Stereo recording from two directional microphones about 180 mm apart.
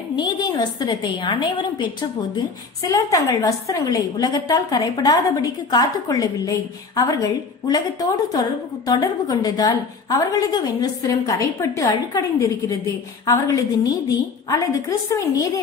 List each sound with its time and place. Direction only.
0.1 s a woman's voice: 25° left (ahead or behind)
7.6 s a woman's voice: 20° left (ahead or behind)